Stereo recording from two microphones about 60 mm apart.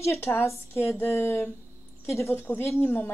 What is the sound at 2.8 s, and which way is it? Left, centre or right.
Speech, left.